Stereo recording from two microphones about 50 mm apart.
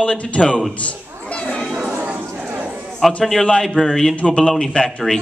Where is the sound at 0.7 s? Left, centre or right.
Left.